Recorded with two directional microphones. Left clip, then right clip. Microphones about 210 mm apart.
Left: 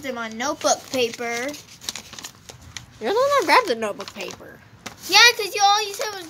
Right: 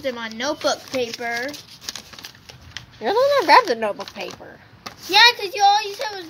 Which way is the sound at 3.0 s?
10° left (ahead or behind).